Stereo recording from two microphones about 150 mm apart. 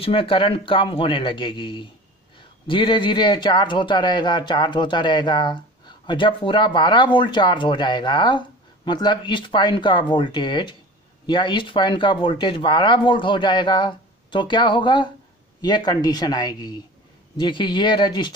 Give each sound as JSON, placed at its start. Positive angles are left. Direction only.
{"t": 0.0, "sound": "a man's voice", "side_deg": 35}